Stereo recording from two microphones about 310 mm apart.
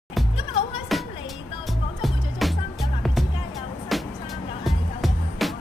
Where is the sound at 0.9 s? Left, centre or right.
Centre.